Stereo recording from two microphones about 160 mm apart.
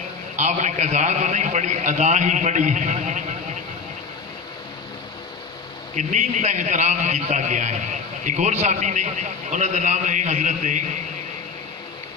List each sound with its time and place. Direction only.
0.4 s a man's voice: 45° right (ahead or behind)
5.9 s a man's voice: 45° right (ahead or behind)